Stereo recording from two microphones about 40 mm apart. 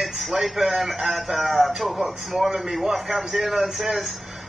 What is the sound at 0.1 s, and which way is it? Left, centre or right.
A man's voice, centre.